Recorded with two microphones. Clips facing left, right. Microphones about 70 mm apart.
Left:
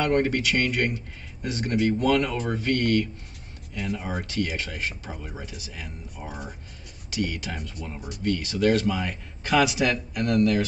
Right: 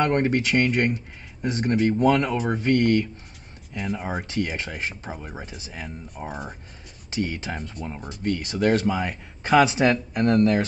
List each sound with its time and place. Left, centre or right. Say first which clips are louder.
0.0 s a man's voice: right 1 dB; right
3.7 s speech: right 1 dB; centre
4.2 s a man's voice: right 1 dB; right